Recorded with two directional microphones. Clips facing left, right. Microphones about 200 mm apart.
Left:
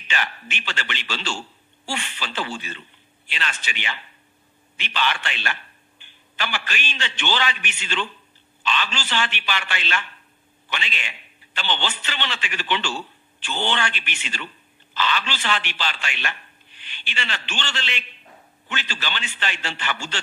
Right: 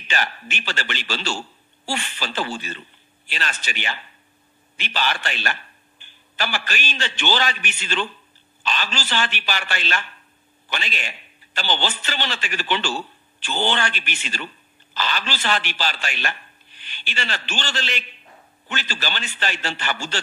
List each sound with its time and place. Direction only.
0.1 s a man's voice: 40° right (ahead or behind)